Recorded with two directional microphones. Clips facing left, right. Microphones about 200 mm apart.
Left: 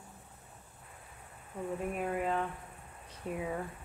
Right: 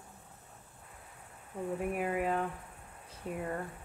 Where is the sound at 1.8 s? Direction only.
5° right (ahead or behind).